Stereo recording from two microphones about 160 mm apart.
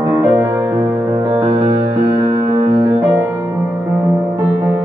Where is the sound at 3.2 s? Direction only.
10° right (ahead or behind).